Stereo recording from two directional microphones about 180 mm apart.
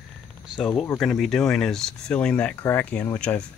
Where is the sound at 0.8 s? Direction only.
Centre (ahead or behind).